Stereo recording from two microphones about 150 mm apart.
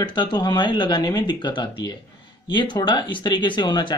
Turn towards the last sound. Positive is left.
turn(degrees=30)  # may be behind; listen again after turning